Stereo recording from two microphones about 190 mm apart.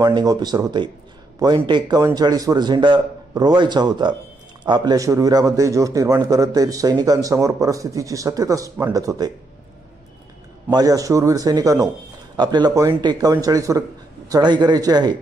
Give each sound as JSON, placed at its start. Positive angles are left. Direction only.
{"t": 0.0, "sound": "a man's voice", "side_deg": -20}
{"t": 10.7, "sound": "a man's voice", "side_deg": -20}